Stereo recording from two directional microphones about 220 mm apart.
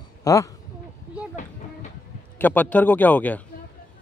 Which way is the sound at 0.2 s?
15° left (ahead or behind).